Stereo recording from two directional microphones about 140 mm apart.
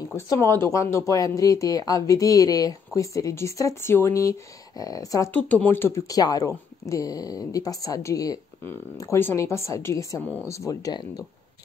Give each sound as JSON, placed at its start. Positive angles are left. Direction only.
{"t": 0.1, "sound": "speech", "side_deg": 20}
{"t": 5.3, "sound": "speech", "side_deg": 10}